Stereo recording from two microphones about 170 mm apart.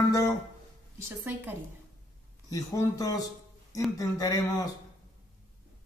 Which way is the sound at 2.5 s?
20° left (ahead or behind).